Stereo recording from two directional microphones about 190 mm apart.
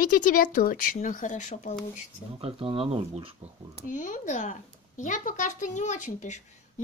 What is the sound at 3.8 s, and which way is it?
Speech, 40° left (ahead or behind).